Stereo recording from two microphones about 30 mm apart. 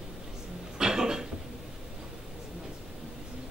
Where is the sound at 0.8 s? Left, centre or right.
Right.